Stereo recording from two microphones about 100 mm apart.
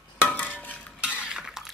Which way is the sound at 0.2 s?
15° left (ahead or behind).